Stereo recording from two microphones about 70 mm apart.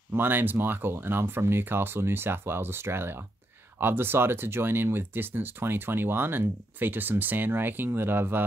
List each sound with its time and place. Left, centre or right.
0.1 s speech: right